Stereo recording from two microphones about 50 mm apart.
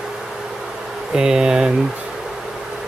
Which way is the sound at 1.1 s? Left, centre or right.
Centre.